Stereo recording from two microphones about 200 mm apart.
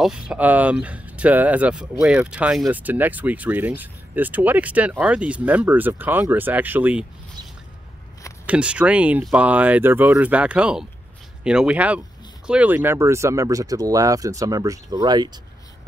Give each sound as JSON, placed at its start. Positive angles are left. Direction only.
{"t": 0.3, "sound": "speech", "side_deg": -10}
{"t": 8.5, "sound": "speech", "side_deg": -5}